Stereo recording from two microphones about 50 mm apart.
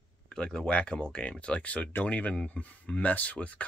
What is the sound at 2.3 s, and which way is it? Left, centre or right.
Speech, centre.